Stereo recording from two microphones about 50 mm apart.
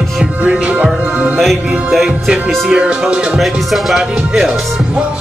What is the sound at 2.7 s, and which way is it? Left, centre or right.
Music, right.